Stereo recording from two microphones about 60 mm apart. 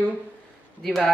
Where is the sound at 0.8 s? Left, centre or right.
Centre.